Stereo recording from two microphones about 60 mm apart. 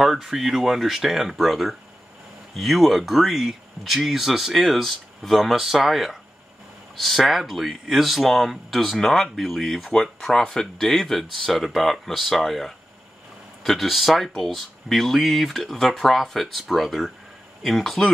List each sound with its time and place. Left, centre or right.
0.0 s speech: centre